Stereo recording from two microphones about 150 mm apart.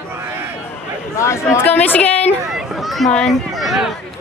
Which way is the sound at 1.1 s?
20° left (ahead or behind).